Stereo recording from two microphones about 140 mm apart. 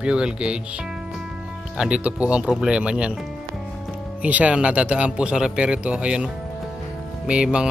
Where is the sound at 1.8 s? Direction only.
10° right (ahead or behind).